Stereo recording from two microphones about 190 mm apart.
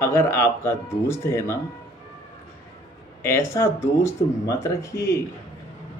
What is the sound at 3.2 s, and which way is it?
Speech, 15° left (ahead or behind).